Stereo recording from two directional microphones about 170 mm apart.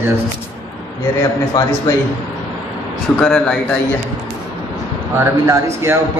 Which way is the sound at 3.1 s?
5° left (ahead or behind).